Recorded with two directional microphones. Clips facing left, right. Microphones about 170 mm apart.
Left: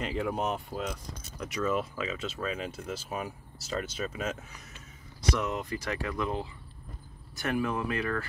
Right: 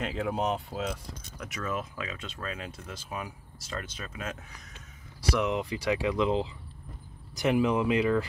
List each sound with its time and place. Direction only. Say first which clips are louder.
0.0 s speech: right 1 dB; centre (ahead or behind)
5.3 s speech: right 3 dB; 10° right (ahead or behind)
7.3 s speech: right 5 dB; 15° right (ahead or behind)